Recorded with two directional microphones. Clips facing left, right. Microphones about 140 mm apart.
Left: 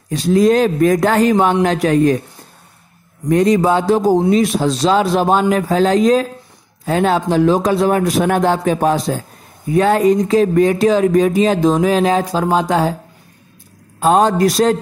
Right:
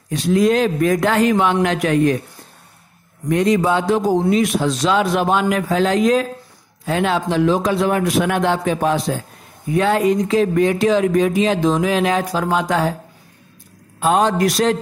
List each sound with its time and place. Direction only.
0.1 s speech: 35° left (ahead or behind)
3.3 s speech: 40° left (ahead or behind)
13.9 s speech: 35° left (ahead or behind)